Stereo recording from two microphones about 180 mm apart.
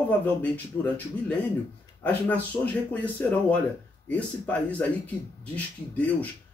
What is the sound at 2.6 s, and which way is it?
Speech, 10° left (ahead or behind).